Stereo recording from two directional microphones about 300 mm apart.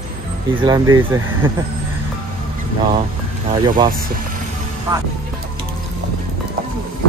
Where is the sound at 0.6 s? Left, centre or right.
Centre.